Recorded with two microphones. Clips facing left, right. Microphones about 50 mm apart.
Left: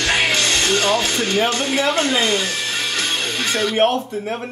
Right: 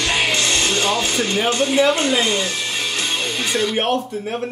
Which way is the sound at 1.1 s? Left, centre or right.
Right.